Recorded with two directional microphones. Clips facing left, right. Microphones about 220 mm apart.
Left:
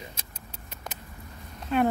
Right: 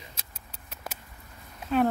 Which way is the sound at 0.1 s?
5° right (ahead or behind).